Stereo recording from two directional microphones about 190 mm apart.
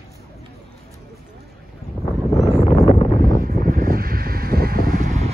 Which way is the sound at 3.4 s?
50° right (ahead or behind).